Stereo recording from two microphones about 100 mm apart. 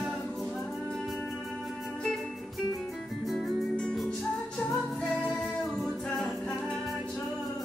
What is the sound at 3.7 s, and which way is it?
Music, 10° left (ahead or behind).